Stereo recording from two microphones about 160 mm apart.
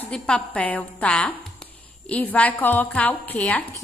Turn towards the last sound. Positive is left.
turn(degrees=10)  # may be behind; listen again after turning